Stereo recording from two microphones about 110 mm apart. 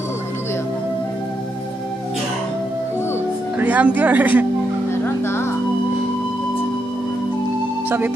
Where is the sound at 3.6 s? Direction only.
15° right (ahead or behind).